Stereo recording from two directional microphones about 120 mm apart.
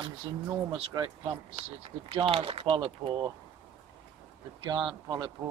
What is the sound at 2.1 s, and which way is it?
Speech, 50° right (ahead or behind).